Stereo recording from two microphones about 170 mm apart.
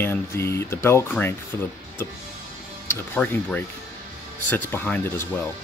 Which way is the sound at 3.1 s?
10° left (ahead or behind).